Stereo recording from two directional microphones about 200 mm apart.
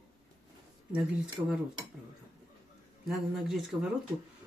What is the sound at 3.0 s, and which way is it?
Speech, centre (ahead or behind).